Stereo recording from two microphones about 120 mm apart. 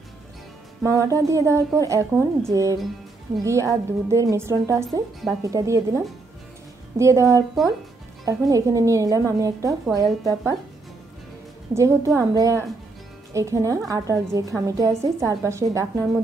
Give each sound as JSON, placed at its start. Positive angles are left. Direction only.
{"t": 0.8, "sound": "a woman's voice", "side_deg": -25}
{"t": 11.7, "sound": "a woman's voice", "side_deg": -25}